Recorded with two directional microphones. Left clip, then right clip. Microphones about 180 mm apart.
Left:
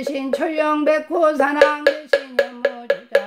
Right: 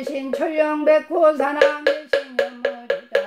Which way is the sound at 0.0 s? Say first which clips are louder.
Left 2 dB; 45° left (ahead or behind).